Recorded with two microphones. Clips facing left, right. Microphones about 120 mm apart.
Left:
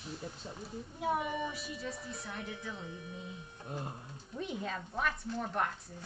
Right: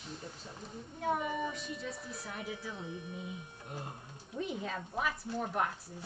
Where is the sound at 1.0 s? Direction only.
5° left (ahead or behind).